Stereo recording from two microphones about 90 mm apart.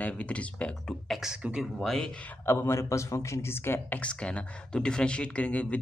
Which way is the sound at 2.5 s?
30° left (ahead or behind).